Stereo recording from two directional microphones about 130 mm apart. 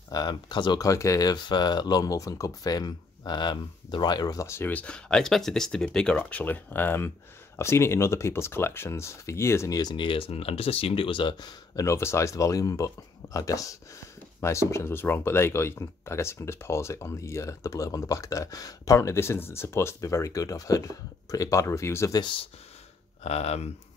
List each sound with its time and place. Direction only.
0.1 s speech: 35° left (ahead or behind)
11.8 s speech: 20° left (ahead or behind)
23.2 s speech: 55° left (ahead or behind)